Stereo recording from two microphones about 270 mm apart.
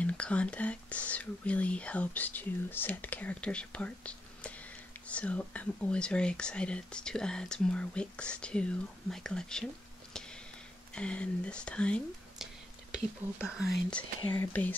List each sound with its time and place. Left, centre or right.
0.0 s speech: centre
11.0 s speech: centre